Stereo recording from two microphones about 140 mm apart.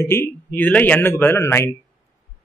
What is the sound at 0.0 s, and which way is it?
Speech, 15° left (ahead or behind).